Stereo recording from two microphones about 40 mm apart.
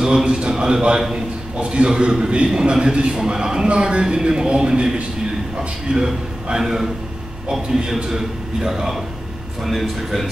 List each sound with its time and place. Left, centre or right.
0.0 s a man's voice: centre
9.7 s a man's voice: centre